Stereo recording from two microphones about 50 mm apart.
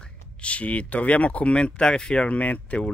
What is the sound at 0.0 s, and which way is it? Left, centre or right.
Speech, left.